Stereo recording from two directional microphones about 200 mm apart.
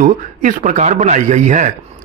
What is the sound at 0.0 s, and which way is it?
A man's voice, 40° right (ahead or behind).